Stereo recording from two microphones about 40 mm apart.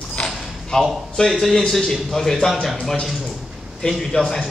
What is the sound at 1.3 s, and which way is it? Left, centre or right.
Speech, centre.